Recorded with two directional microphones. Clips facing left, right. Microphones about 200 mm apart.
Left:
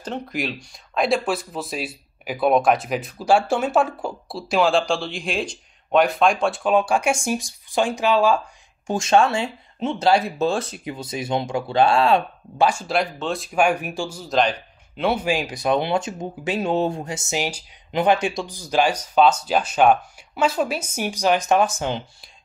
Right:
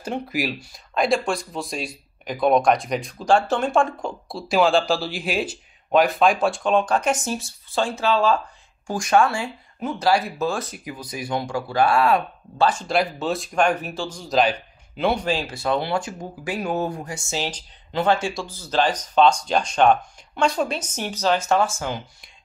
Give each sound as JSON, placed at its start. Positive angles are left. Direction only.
{"t": 0.0, "sound": "speech", "side_deg": -10}
{"t": 8.8, "sound": "speech", "side_deg": 25}
{"t": 12.6, "sound": "speech", "side_deg": 5}